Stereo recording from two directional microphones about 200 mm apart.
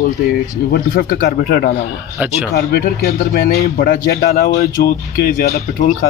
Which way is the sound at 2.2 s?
10° right (ahead or behind).